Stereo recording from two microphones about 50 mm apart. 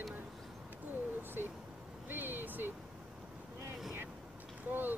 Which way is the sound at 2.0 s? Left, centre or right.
Right.